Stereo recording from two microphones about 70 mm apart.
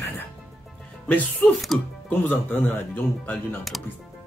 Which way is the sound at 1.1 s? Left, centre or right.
Left.